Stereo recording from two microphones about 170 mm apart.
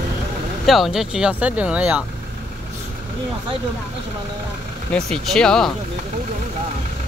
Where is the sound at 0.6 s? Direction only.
Centre (ahead or behind).